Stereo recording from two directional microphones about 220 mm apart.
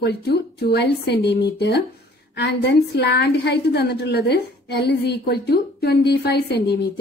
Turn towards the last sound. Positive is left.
turn(degrees=45)  # may be behind; listen again after turning